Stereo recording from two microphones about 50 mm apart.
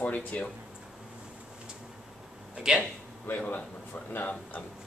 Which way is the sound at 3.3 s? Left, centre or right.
Left.